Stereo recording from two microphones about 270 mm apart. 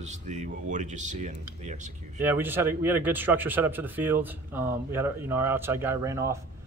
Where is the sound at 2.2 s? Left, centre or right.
Centre.